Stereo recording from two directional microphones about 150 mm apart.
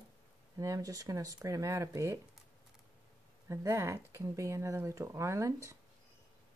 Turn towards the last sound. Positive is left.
turn(degrees=-20)  # may be behind; listen again after turning